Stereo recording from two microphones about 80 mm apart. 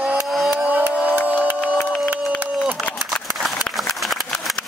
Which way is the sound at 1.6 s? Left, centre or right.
Centre.